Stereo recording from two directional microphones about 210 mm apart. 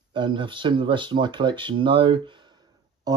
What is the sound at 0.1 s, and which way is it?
Speech, 20° right (ahead or behind).